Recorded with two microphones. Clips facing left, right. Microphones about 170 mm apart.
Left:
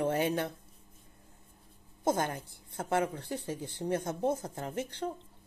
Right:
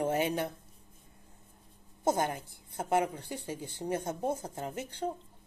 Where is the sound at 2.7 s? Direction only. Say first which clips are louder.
Right 1 dB; 10° right (ahead or behind).